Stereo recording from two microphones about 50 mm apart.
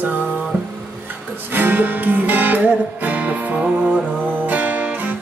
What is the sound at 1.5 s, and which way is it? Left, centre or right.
Music, right.